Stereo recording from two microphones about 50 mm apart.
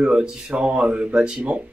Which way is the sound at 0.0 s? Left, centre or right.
Right.